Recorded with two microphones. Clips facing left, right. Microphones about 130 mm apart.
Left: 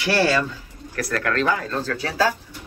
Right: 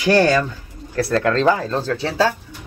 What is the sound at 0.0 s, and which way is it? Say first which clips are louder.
Speech: right 5 dB; 20° right (ahead or behind).